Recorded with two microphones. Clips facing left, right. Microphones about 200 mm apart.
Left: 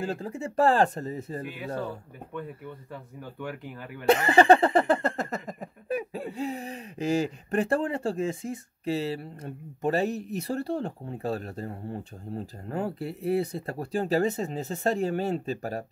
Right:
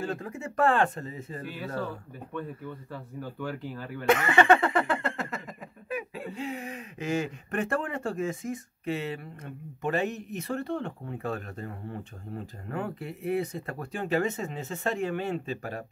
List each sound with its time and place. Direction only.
0.0 s speech: 30° left (ahead or behind)
1.4 s speech: 15° left (ahead or behind)
4.0 s speech: 35° left (ahead or behind)